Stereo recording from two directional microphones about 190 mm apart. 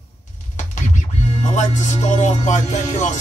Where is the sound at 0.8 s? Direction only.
40° left (ahead or behind).